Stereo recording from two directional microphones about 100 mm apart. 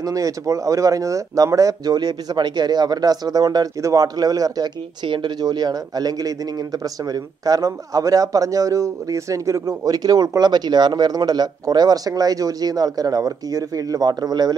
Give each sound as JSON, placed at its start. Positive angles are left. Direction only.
{"t": 0.0, "sound": "a man's voice", "side_deg": -35}
{"t": 5.0, "sound": "a man's voice", "side_deg": -55}